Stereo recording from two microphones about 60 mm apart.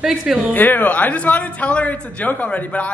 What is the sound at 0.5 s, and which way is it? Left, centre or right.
A man's voice, left.